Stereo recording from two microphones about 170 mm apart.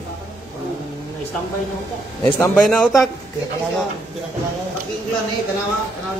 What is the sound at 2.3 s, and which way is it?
Speech, 5° left (ahead or behind).